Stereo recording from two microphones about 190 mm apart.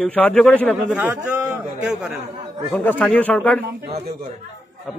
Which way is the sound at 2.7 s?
5° left (ahead or behind).